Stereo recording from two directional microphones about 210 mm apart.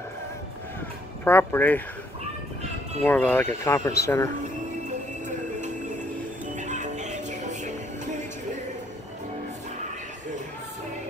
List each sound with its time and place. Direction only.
1.2 s speech: 10° left (ahead or behind)
3.0 s speech: 10° left (ahead or behind)
6.4 s music: 35° right (ahead or behind)